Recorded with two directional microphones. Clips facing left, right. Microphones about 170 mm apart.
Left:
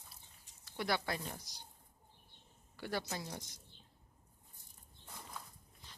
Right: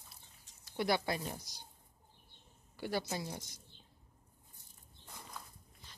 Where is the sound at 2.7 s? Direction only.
10° right (ahead or behind).